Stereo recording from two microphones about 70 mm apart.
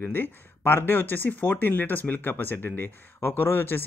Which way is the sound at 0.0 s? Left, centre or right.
Left.